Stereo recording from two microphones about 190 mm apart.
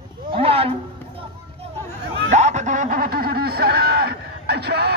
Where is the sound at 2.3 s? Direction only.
40° right (ahead or behind).